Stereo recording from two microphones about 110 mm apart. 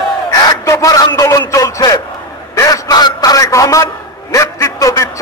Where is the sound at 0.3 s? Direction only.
35° left (ahead or behind).